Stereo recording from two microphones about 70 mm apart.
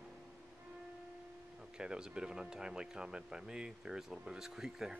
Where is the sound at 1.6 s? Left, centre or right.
Centre.